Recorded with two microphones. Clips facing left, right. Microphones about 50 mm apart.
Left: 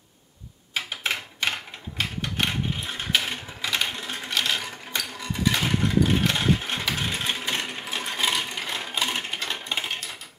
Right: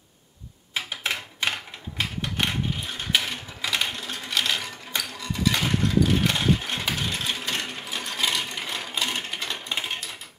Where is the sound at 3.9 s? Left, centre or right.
Centre.